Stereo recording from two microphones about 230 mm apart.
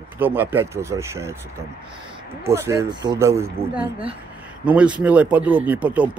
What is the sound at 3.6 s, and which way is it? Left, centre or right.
Speech, right.